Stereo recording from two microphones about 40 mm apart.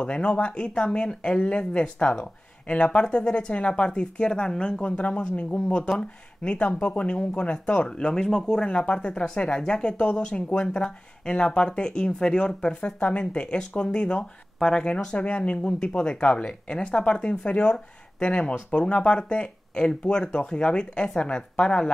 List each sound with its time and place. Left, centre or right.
0.0 s speech: left
4.8 s speech: left; by 8.6 s centre
8.6 s speech: left
15.0 s speech: left